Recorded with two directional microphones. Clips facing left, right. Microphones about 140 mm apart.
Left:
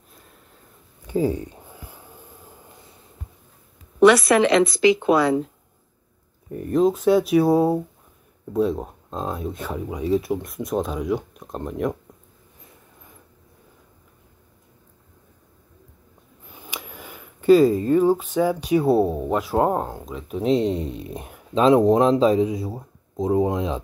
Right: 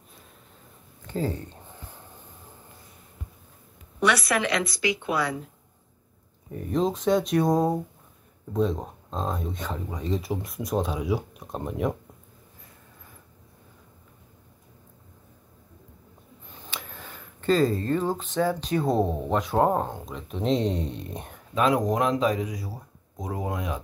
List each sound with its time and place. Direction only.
1.0 s a sound: 10° left (ahead or behind)
4.0 s speech: 25° left (ahead or behind)
6.5 s speech: centre (ahead or behind)
16.4 s speech: 10° left (ahead or behind)
21.5 s speech: 25° left (ahead or behind)